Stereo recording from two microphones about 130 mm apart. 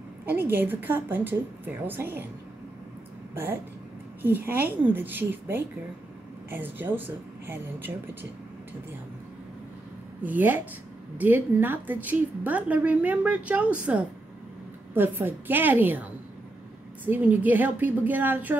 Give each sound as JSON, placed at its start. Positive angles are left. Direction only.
{"t": 0.2, "sound": "a woman's voice", "side_deg": -15}
{"t": 4.2, "sound": "a woman's voice", "side_deg": -15}
{"t": 10.2, "sound": "a woman's voice", "side_deg": -15}